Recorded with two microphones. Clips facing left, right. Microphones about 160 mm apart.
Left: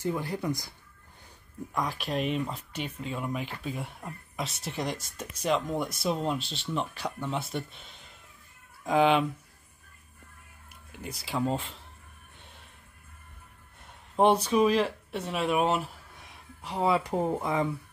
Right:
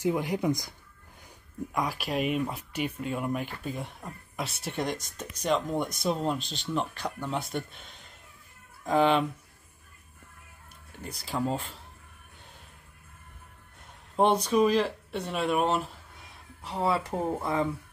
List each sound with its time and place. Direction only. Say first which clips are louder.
0.0 s speech: right 4 dB; 15° right (ahead or behind)
1.7 s speech: right 1 dB; 5° right (ahead or behind)
11.0 s speech: even; 5° left (ahead or behind)
14.1 s speech: left 1 dB; 5° left (ahead or behind)